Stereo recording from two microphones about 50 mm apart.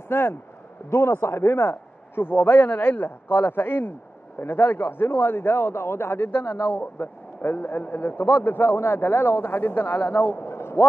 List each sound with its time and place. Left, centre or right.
0.1 s speech: left
0.8 s a man's voice: left